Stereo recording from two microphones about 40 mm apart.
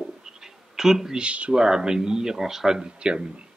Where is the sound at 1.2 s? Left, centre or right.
Right.